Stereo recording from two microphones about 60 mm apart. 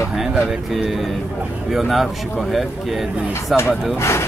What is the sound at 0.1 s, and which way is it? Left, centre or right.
Speech, centre.